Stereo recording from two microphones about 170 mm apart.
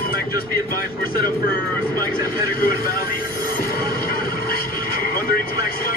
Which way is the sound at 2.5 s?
60° left (ahead or behind).